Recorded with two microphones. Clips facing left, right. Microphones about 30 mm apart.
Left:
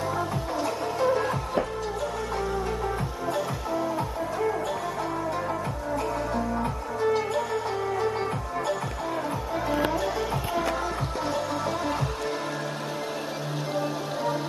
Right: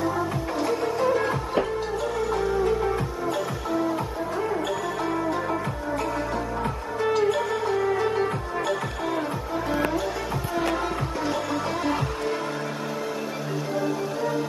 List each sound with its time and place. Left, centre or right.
0.6 s music: right
7.2 s music: right
11.2 s music: right